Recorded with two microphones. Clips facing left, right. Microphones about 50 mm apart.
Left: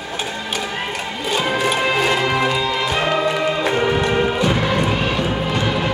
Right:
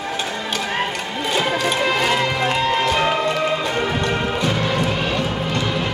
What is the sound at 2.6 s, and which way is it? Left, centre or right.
Music, right.